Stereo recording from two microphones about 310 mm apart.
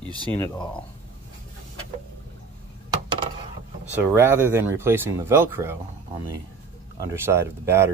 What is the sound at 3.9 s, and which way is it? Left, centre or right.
Speech, centre.